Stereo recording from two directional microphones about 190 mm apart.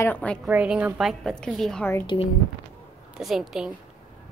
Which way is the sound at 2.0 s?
25° left (ahead or behind).